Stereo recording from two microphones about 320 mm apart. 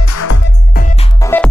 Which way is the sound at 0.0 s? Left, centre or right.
Left.